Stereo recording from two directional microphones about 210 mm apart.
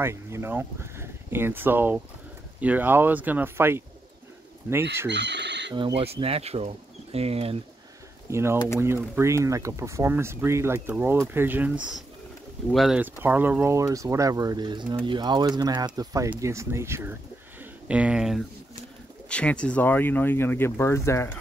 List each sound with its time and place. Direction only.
0.0 s speech: 10° right (ahead or behind)
5.1 s bird: 55° right (ahead or behind)
5.8 s speech: 25° right (ahead or behind)
8.3 s speech: 10° right (ahead or behind); by 21.3 s 15° left (ahead or behind)